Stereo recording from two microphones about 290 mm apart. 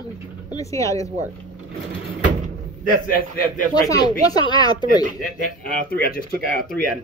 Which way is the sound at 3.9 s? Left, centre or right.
Centre.